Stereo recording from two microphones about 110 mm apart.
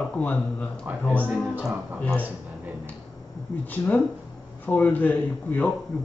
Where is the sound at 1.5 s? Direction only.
15° right (ahead or behind).